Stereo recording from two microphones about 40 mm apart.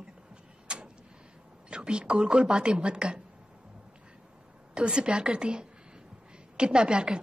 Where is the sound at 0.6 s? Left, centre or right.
Right.